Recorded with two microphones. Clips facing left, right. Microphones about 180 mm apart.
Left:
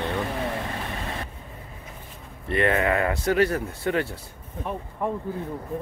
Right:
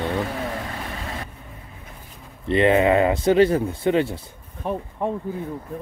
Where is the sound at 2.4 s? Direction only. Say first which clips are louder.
Right 6 dB; 20° right (ahead or behind).